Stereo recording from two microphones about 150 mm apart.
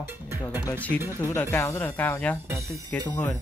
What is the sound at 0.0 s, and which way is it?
Speech, 15° right (ahead or behind).